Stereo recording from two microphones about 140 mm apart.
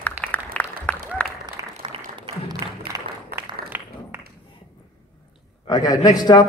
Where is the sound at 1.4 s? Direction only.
30° right (ahead or behind).